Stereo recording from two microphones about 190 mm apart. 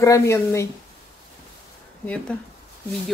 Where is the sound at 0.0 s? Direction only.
15° left (ahead or behind).